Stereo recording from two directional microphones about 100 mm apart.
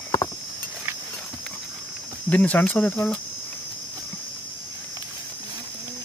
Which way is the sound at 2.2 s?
15° left (ahead or behind).